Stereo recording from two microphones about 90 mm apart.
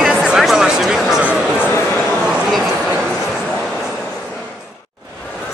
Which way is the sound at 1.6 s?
25° left (ahead or behind).